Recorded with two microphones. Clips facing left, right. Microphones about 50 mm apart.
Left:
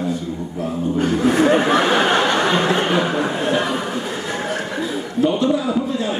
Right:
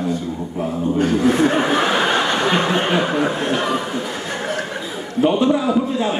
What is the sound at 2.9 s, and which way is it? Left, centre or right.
Speech, centre.